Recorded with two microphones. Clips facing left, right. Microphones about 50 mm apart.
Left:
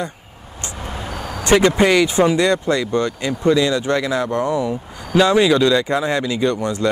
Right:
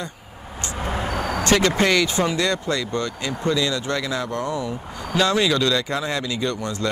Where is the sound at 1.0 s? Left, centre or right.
Right.